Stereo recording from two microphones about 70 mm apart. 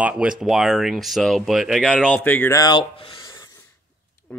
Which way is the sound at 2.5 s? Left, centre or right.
Left.